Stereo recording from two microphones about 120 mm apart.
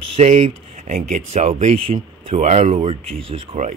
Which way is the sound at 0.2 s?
75° right (ahead or behind).